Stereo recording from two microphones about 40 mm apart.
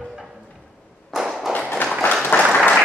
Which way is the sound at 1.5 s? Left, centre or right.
Left.